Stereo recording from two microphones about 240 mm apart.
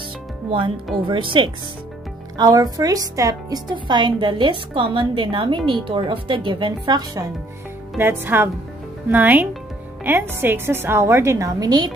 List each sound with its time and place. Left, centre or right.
1.0 s a woman's voice: right